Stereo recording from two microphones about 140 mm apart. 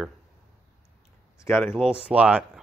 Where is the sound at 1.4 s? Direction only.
15° left (ahead or behind).